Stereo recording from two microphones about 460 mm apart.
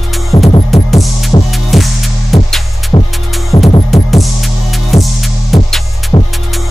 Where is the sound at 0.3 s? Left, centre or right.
Centre.